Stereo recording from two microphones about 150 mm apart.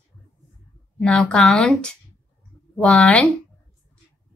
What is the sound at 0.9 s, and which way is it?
A woman's voice, 5° left (ahead or behind).